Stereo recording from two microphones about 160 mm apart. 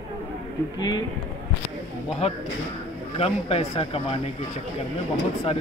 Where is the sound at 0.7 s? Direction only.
25° left (ahead or behind).